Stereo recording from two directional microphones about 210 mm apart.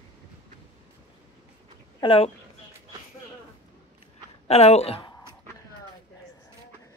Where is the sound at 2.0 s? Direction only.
25° left (ahead or behind).